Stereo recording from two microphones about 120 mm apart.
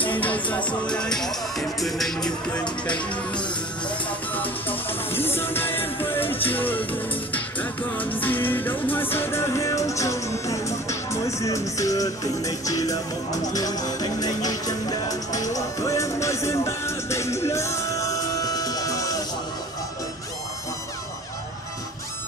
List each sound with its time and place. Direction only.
0.0 s speech: 15° left (ahead or behind)
4.3 s music: 15° left (ahead or behind)